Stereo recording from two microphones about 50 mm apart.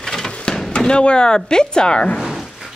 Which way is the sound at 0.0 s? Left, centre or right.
Centre.